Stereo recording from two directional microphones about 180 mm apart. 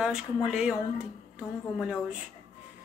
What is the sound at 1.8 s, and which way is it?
Speech, 5° right (ahead or behind).